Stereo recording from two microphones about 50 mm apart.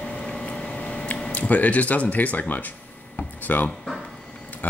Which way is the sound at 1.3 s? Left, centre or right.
Left.